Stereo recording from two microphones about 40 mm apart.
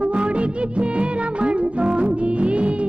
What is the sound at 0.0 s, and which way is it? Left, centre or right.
Music, right.